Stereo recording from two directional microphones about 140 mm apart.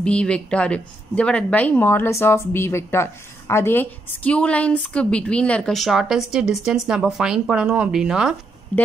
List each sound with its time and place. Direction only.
0.0 s a woman's voice: 10° left (ahead or behind)
8.7 s a woman's voice: 10° left (ahead or behind)